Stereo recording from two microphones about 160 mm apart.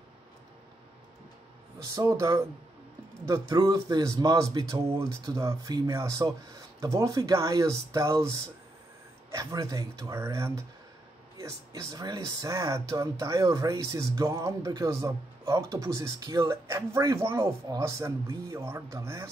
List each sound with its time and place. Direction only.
2.0 s speech: 20° right (ahead or behind)